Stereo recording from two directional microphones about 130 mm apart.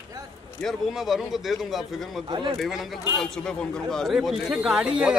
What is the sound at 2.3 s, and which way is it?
Speech, 35° right (ahead or behind).